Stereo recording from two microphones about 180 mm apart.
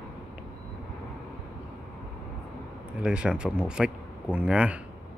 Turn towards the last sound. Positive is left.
turn(degrees=-5)  # may be behind; listen again after turning